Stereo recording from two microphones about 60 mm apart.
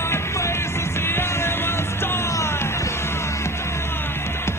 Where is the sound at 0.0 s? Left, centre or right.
Left.